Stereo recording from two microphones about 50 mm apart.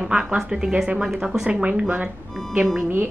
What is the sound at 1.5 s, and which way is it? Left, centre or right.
Speech, right.